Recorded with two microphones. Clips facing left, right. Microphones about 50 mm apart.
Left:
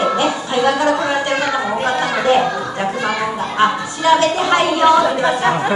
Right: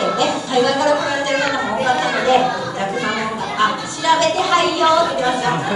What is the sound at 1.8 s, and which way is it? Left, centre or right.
Children playing, left.